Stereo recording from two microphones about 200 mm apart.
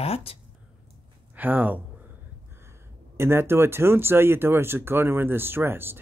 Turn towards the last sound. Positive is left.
turn(degrees=-10)  # may be behind; listen again after turning